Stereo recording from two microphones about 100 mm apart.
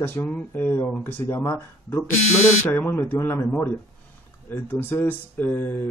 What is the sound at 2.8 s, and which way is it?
Speech, 20° left (ahead or behind).